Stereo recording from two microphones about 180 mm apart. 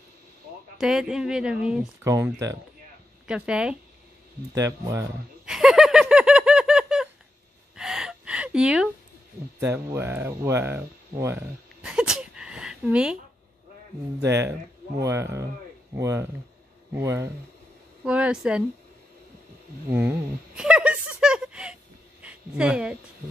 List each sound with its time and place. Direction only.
0.7 s speech: 5° right (ahead or behind)
2.0 s speech: 15° right (ahead or behind)
3.3 s speech: 5° right (ahead or behind)
4.6 s speech: 15° right (ahead or behind)
5.4 s a sound: 5° right (ahead or behind)
7.7 s gasp: 5° right (ahead or behind)
9.6 s speech: 15° right (ahead or behind)
11.8 s a sound: 5° right (ahead or behind)
14.2 s speech: 15° right (ahead or behind)
19.9 s a sound: 10° right (ahead or behind)
22.2 s speech: 5° right (ahead or behind)